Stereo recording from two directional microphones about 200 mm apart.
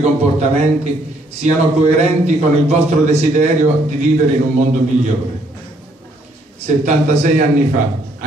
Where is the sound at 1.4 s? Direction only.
35° right (ahead or behind).